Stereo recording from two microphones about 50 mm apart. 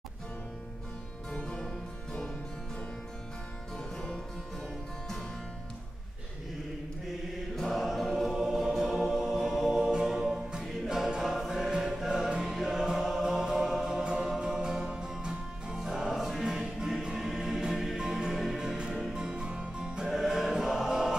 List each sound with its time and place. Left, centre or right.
3.7 s music: centre
7.5 s choir: centre
9.8 s music: centre
11.1 s choir: centre
11.7 s music: centre
20.1 s choir: centre